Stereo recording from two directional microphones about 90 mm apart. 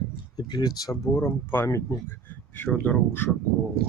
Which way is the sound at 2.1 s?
25° left (ahead or behind).